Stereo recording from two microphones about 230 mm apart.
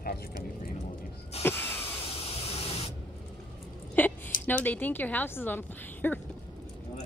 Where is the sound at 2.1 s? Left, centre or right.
Left.